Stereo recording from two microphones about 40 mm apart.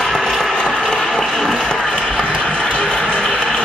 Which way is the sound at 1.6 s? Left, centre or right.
Centre.